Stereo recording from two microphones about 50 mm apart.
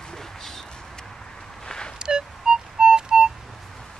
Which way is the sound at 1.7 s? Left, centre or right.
Centre.